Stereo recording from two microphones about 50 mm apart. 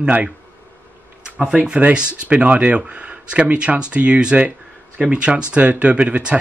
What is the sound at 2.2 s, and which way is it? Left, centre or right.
Speech, right.